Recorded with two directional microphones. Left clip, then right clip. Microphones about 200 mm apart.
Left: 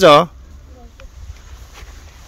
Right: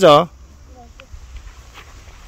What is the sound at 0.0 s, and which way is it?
Speech, centre (ahead or behind).